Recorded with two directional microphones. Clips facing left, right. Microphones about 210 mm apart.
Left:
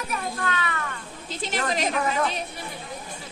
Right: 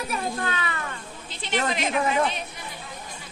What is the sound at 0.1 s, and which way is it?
Speech, 30° right (ahead or behind).